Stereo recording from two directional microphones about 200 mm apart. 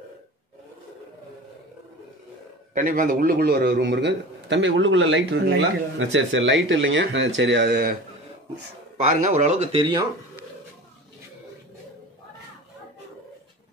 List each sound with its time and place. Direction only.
2.7 s a man's voice: 45° right (ahead or behind)
9.0 s speech: 40° right (ahead or behind)